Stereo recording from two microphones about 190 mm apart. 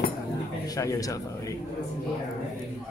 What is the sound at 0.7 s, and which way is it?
Speech, 20° left (ahead or behind).